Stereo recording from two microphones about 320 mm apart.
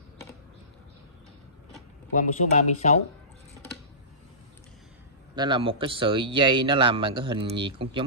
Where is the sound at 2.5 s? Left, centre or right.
Left.